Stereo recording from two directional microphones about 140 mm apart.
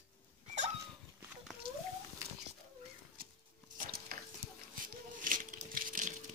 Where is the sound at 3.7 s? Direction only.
90° right.